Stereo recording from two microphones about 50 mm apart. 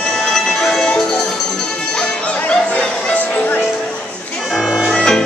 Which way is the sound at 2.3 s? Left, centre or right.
Left.